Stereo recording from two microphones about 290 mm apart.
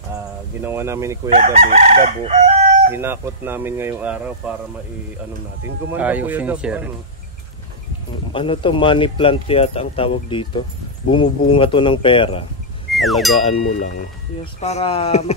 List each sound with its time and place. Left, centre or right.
0.7 s speech: centre
1.3 s crowing: right
2.9 s speech: centre
5.9 s speech: centre
8.3 s speech: centre
12.9 s speech: centre
13.5 s speech: left